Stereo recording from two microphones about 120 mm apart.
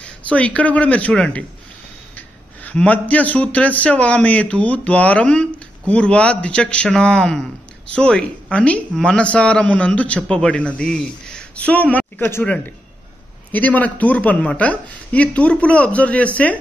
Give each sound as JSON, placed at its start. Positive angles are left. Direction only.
{"t": 0.0, "sound": "a man's voice", "side_deg": 10}